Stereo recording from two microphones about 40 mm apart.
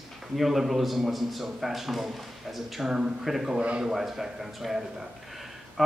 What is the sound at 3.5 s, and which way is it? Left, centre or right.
Speech, right.